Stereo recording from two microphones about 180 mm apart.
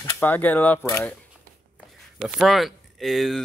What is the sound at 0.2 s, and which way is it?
Speech, 10° left (ahead or behind).